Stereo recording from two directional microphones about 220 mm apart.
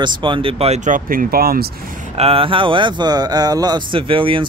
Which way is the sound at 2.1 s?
25° right (ahead or behind).